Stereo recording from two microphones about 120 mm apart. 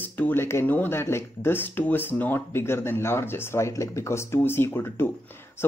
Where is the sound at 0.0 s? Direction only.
15° left (ahead or behind).